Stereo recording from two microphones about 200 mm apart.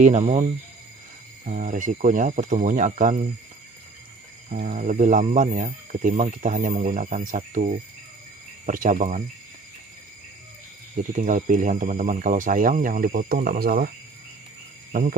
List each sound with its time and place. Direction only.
0.2 s speech: 30° right (ahead or behind)
1.4 s speech: 40° right (ahead or behind)
4.5 s speech: 40° right (ahead or behind)
11.0 s speech: 40° right (ahead or behind)
14.9 s cricket: 40° right (ahead or behind)